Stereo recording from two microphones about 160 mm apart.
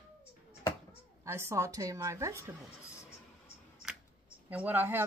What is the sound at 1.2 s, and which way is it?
A woman's voice, 20° right (ahead or behind).